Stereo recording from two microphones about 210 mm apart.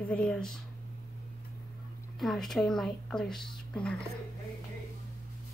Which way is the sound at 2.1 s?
Centre (ahead or behind).